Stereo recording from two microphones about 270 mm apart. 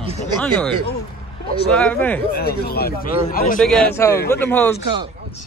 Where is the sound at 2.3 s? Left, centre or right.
Left.